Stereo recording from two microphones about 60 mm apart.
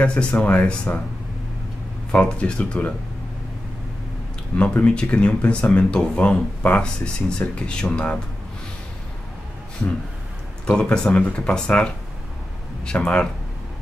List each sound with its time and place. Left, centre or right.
0.0 s speech: centre
2.1 s speech: centre
4.7 s speech: centre
10.7 s speech: centre